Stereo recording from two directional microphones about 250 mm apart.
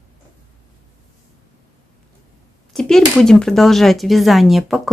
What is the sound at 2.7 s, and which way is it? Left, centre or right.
Speech, centre.